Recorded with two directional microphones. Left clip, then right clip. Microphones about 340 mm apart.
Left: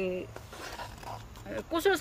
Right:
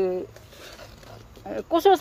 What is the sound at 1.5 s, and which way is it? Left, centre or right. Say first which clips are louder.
Speech: right 9 dB; centre.